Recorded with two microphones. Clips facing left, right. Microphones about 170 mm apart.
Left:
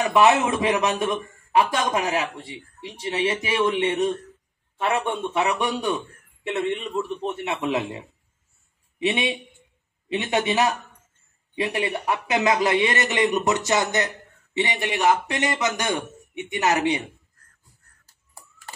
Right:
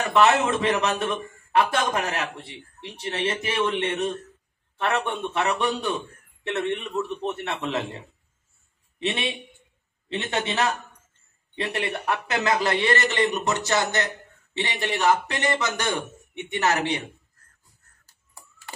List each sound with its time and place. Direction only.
0.1 s a man's voice: 10° left (ahead or behind)
9.0 s a man's voice: 10° left (ahead or behind)